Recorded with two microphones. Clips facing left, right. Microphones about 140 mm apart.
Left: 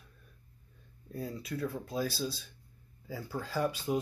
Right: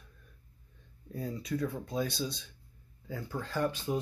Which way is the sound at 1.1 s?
5° left (ahead or behind).